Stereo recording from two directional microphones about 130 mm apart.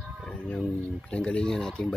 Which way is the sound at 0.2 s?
10° left (ahead or behind).